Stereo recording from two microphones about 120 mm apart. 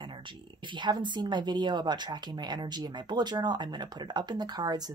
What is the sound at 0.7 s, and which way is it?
Speech, 40° right (ahead or behind).